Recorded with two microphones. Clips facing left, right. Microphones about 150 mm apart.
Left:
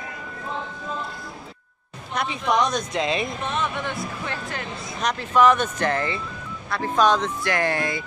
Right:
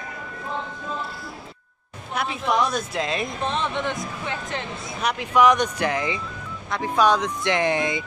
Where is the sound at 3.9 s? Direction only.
20° right (ahead or behind).